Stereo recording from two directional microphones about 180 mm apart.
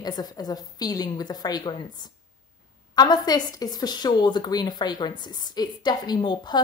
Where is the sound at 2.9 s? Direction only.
20° left (ahead or behind).